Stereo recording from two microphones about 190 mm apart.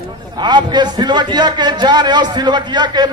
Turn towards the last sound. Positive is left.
turn(degrees=-25)  # may be behind; listen again after turning